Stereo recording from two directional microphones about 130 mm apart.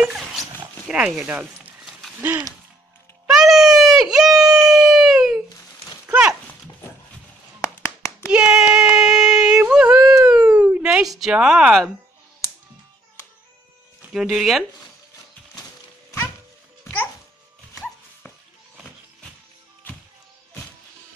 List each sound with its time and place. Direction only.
0.0 s dog: 5° right (ahead or behind)
0.8 s a sound: 5° right (ahead or behind)
2.2 s gasp: 25° right (ahead or behind)
3.3 s baby cry: 5° right (ahead or behind)
4.3 s gasp: 25° right (ahead or behind)
4.6 s a sound: centre (ahead or behind)
7.6 s a sound: 25° left (ahead or behind)
8.3 s yodeling: 10° right (ahead or behind)
14.1 s speech: 5° right (ahead or behind)
16.8 s babbling: 15° left (ahead or behind)